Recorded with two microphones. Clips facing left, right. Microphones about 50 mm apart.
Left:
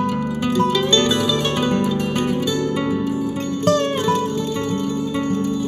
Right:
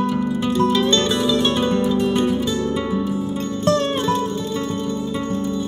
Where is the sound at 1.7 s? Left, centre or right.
Left.